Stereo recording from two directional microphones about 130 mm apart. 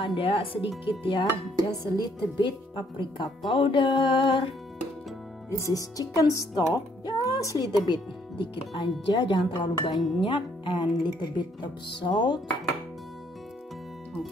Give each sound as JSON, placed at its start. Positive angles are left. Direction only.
{"t": 0.0, "sound": "speech", "side_deg": 45}
{"t": 5.6, "sound": "music", "side_deg": 25}
{"t": 8.5, "sound": "speech", "side_deg": 35}